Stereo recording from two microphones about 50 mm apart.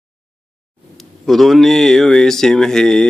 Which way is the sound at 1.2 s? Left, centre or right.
Centre.